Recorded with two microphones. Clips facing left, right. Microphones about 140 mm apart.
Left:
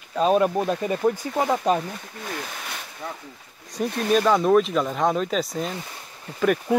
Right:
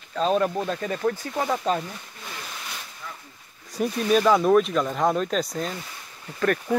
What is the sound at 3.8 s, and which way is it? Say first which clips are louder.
Speech: even; centre (ahead or behind).